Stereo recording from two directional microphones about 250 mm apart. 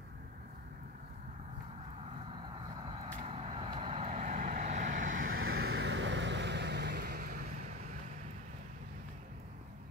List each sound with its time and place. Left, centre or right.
3.3 s vehicle: right